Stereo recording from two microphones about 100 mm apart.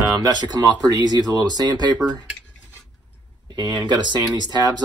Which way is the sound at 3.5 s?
50° right (ahead or behind).